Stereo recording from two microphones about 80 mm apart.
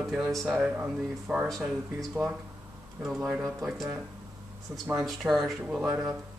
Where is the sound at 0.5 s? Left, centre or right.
Centre.